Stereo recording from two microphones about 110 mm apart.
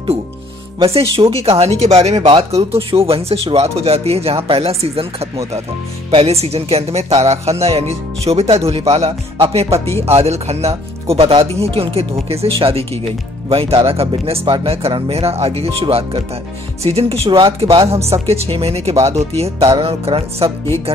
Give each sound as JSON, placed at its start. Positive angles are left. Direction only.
{"t": 0.7, "sound": "speech", "side_deg": -55}
{"t": 2.5, "sound": "speech", "side_deg": -60}